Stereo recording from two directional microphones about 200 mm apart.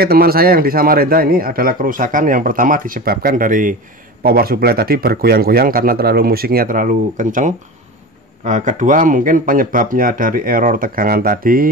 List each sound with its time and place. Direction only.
0.0 s a man's voice: 50° right (ahead or behind)